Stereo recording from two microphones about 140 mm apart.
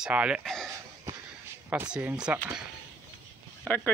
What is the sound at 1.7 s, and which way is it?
Speech, 10° right (ahead or behind).